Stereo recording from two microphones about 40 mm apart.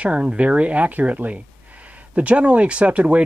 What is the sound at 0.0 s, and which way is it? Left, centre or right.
Speech, right.